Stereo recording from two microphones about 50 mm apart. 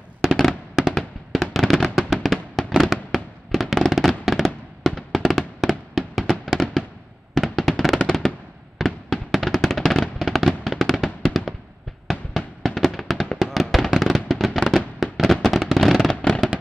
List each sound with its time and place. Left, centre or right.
0.2 s fireworks: centre
2.2 s music: centre
2.8 s fireworks: centre
12.1 s music: centre
13.4 s fireworks: centre
16.1 s fireworks: centre